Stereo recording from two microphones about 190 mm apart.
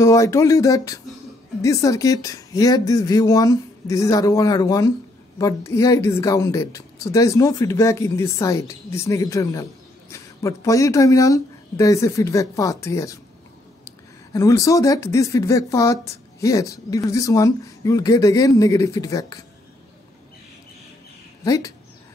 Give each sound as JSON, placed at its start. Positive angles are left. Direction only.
{"t": 0.0, "sound": "a woman's voice", "side_deg": 15}
{"t": 14.3, "sound": "a woman's voice", "side_deg": 15}
{"t": 21.5, "sound": "a woman's voice", "side_deg": 20}